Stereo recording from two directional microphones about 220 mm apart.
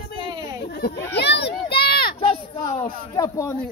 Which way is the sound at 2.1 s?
25° left (ahead or behind).